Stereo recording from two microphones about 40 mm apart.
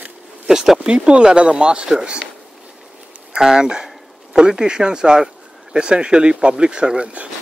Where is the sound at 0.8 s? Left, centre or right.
Right.